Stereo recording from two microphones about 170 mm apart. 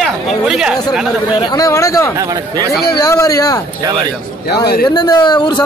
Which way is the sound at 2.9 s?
20° left (ahead or behind).